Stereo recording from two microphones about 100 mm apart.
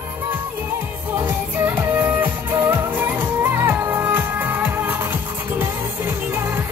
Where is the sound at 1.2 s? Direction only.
20° right (ahead or behind).